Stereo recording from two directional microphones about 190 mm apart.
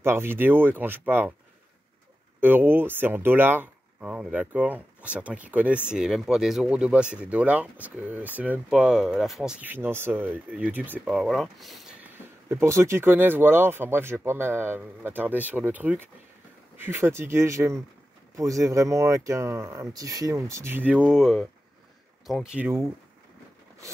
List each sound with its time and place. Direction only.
0.0 s speech: 10° right (ahead or behind)
2.4 s speech: 10° right (ahead or behind)
12.4 s speech: 15° right (ahead or behind)